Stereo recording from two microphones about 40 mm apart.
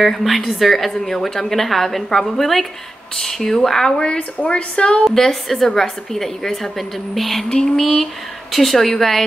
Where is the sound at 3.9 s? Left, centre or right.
Left.